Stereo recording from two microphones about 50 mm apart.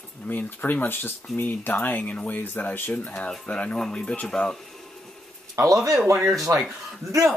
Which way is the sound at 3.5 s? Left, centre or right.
Left.